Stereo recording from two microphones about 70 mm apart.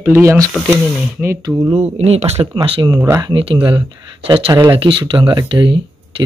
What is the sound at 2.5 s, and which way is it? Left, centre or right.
Speech, right.